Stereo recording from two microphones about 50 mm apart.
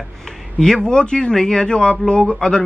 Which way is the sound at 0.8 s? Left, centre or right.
Centre.